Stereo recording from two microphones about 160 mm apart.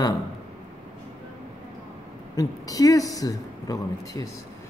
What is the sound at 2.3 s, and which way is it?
Speech, 20° left (ahead or behind).